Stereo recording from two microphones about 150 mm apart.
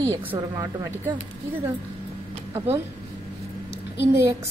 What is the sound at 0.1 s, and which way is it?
Speech, 20° right (ahead or behind).